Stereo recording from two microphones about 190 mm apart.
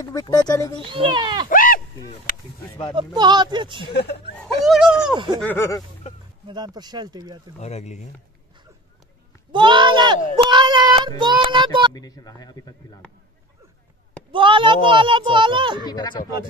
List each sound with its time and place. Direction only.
0.0 s speech: 20° left (ahead or behind)
0.7 s a child's voice: 25° right (ahead or behind)
1.5 s a sound: 45° left (ahead or behind)
3.0 s a child's voice: 25° right (ahead or behind)
3.8 s speech: 60° left (ahead or behind)
4.4 s speech: centre (ahead or behind)
5.1 s a child's voice: 25° right (ahead or behind)
5.4 s speech: 10° left (ahead or behind)
6.4 s a child's voice: 20° right (ahead or behind)
7.6 s speech: 35° left (ahead or behind)
9.5 s child singing: 25° right (ahead or behind)
11.9 s speech: 20° left (ahead or behind)
14.3 s a child's voice: 25° right (ahead or behind)
15.8 s speech: 20° left (ahead or behind)